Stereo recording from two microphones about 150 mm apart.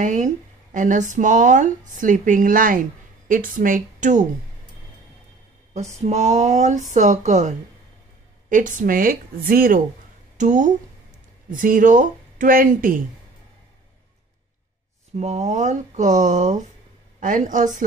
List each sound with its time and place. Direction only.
0.0 s speech: 60° right (ahead or behind)
5.7 s a woman's voice: 45° right (ahead or behind); by 9.8 s 75° right (ahead or behind)
10.3 s speech: 55° right (ahead or behind)
15.1 s speech: 50° right (ahead or behind)